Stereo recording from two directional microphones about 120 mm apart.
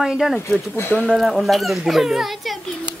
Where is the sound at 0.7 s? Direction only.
20° left (ahead or behind).